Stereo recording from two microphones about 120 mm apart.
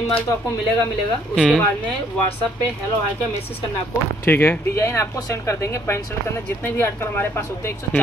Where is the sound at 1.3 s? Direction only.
Centre (ahead or behind).